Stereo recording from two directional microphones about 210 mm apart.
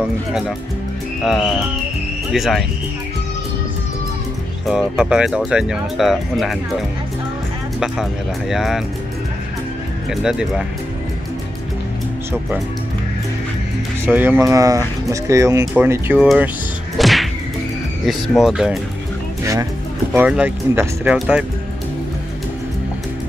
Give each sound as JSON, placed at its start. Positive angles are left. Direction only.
{"t": 0.3, "sound": "speech", "side_deg": 0}
{"t": 4.6, "sound": "speech", "side_deg": -5}
{"t": 7.8, "sound": "speech", "side_deg": 0}
{"t": 10.2, "sound": "speech", "side_deg": -5}
{"t": 12.3, "sound": "speech", "side_deg": -5}
{"t": 14.0, "sound": "speech", "side_deg": -10}
{"t": 16.9, "sound": "whip", "side_deg": 0}
{"t": 18.0, "sound": "speech", "side_deg": 0}
{"t": 19.4, "sound": "speech", "side_deg": -15}
{"t": 20.1, "sound": "speech", "side_deg": -5}